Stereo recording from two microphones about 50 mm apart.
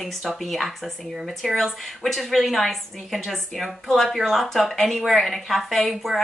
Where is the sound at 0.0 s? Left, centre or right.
Centre.